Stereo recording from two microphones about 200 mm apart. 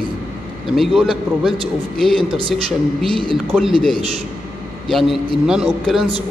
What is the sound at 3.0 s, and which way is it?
Speech, 25° right (ahead or behind).